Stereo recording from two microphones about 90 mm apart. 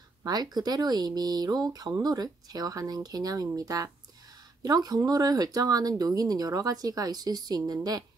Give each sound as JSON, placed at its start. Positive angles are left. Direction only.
{"t": 0.2, "sound": "speech", "side_deg": -45}